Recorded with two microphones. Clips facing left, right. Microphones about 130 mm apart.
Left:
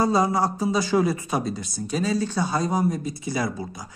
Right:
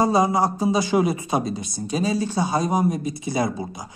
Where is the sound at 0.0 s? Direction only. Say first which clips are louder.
Right 2 dB; 15° right (ahead or behind).